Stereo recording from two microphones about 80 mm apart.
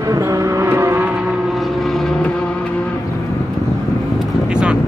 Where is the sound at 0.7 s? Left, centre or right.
Right.